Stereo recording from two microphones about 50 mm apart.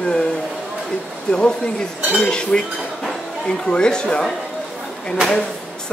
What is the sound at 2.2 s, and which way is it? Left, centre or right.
Cutlery, centre.